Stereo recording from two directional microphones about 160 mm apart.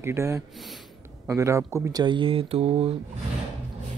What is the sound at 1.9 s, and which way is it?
A man's voice, 30° right (ahead or behind).